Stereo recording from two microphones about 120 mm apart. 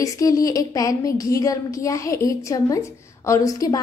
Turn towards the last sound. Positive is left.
turn(degrees=30)  # may be behind; listen again after turning